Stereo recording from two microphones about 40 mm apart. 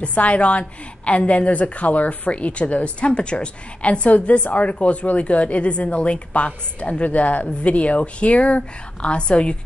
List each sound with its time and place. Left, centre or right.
0.0 s a woman's voice: left